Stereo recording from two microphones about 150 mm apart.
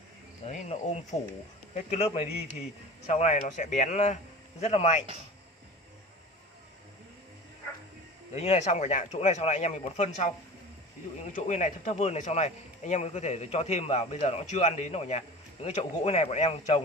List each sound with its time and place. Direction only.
0.5 s speech: 50° left (ahead or behind)
8.3 s speech: 45° left (ahead or behind)
11.3 s speech: 55° left (ahead or behind)